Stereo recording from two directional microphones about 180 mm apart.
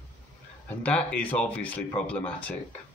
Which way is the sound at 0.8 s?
10° left (ahead or behind).